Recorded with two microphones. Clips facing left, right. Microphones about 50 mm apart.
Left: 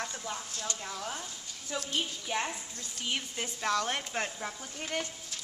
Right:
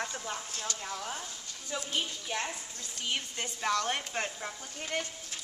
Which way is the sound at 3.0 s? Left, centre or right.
Centre.